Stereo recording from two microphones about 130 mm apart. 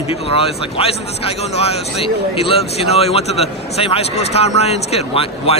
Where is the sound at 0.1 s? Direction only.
50° left (ahead or behind).